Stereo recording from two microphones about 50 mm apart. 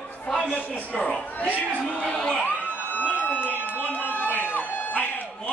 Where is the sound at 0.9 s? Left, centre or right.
Left.